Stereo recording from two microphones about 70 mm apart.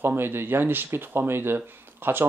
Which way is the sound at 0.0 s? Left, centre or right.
Right.